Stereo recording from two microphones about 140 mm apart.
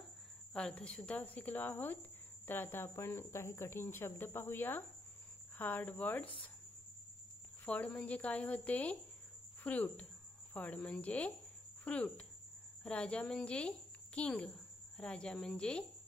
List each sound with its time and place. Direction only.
0.5 s speech: 5° left (ahead or behind)
7.6 s speech: 10° left (ahead or behind)